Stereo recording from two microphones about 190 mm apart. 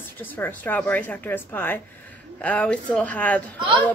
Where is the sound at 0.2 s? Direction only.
10° left (ahead or behind).